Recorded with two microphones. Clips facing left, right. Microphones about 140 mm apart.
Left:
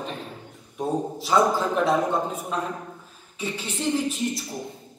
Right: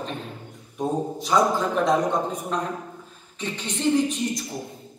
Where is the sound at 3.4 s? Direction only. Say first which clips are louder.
Even; 10° left (ahead or behind).